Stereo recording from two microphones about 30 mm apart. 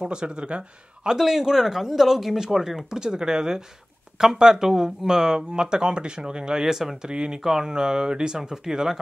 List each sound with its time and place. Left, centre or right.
0.0 s speech: right
1.1 s speech: centre; by 6.6 s right
6.6 s speech: centre
7.0 s speech: right